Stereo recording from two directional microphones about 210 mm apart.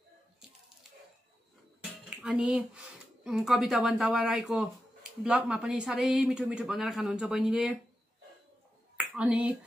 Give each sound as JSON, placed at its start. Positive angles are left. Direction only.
{"t": 2.0, "sound": "speech", "side_deg": -5}
{"t": 8.9, "sound": "speech", "side_deg": -5}